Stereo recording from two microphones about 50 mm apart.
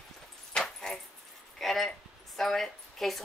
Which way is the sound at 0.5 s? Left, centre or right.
Centre.